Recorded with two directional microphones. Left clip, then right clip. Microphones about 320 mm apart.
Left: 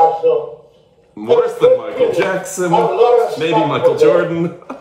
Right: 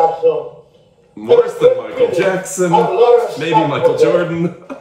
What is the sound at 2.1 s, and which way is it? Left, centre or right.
A man's voice, centre.